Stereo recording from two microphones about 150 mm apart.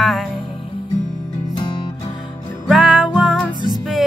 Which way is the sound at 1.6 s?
30° left (ahead or behind).